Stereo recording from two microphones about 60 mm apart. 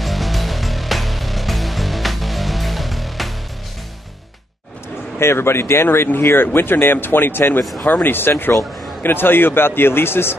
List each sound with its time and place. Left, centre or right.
0.0 s music: centre
5.2 s speech: left